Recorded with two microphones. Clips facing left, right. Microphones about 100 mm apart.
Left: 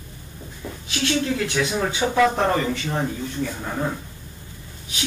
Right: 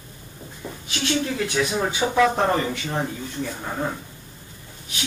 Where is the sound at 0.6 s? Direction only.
20° right (ahead or behind).